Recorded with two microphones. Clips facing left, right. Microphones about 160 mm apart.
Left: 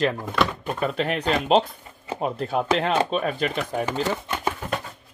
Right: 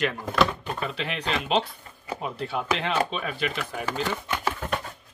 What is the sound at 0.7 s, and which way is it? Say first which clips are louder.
Speech: left 6 dB; 50° left (ahead or behind).